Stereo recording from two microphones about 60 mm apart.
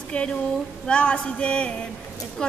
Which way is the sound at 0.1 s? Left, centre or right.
Centre.